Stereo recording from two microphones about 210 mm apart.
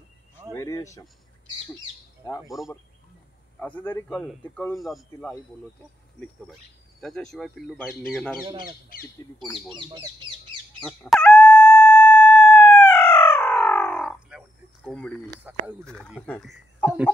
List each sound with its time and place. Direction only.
0.5 s a sound: 15° left (ahead or behind)
2.4 s speech: centre (ahead or behind)
8.9 s speech: 45° left (ahead or behind)
9.8 s speech: 20° right (ahead or behind)
10.9 s a sound: 5° left (ahead or behind)
14.9 s speech: centre (ahead or behind)
15.9 s speech: 5° left (ahead or behind)